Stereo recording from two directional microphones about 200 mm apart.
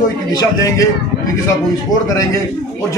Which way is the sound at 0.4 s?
15° left (ahead or behind).